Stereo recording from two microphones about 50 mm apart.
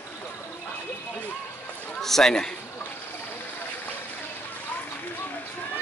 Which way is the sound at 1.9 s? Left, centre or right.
Centre.